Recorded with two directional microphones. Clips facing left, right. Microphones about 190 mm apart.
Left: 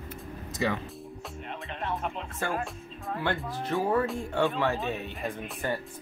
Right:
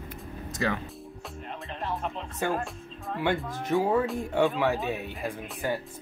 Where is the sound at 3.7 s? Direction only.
10° right (ahead or behind).